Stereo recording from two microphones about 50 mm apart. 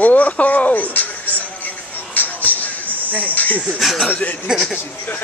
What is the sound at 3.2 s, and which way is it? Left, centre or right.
Cricket, left.